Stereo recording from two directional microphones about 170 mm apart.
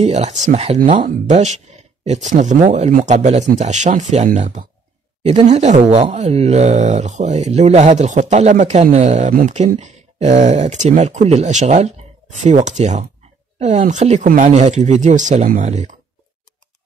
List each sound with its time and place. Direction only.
0.0 s speech: 40° right (ahead or behind)
5.2 s speech: 30° right (ahead or behind)
5.5 s speech: 40° right (ahead or behind)